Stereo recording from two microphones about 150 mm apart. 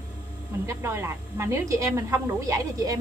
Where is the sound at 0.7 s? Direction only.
15° right (ahead or behind).